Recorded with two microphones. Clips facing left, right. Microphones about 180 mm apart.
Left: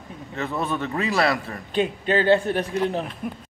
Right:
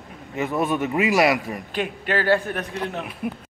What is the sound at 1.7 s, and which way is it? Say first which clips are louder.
A man's voice: left 4 dB; 25° left (ahead or behind).